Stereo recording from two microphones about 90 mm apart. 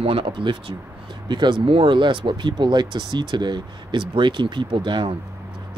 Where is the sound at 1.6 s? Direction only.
75° right (ahead or behind).